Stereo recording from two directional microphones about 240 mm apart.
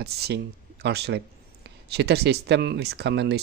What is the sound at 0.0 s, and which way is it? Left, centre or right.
A man's voice, right.